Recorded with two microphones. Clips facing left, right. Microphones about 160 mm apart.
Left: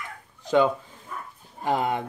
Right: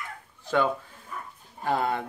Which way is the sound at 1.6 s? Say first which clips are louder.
Left 2 dB; 15° left (ahead or behind).